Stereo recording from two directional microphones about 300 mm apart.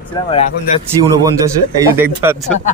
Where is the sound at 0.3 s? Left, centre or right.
Centre.